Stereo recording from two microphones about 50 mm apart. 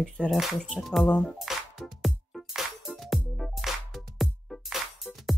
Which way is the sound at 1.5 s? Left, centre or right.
Centre.